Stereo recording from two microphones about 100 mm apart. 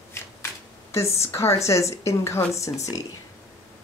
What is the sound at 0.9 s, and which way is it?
Speech, 30° left (ahead or behind).